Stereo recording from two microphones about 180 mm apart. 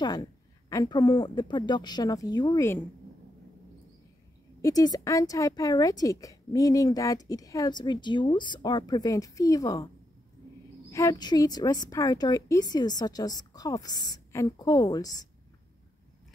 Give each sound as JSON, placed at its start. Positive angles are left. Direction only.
{"t": 0.0, "sound": "speech", "side_deg": 20}
{"t": 4.6, "sound": "speech", "side_deg": 20}
{"t": 10.9, "sound": "speech", "side_deg": 15}